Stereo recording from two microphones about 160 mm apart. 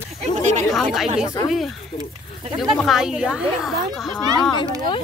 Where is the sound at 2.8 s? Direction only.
Centre (ahead or behind).